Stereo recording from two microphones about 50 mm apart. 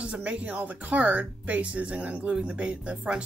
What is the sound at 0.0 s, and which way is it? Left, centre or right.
Speech, right.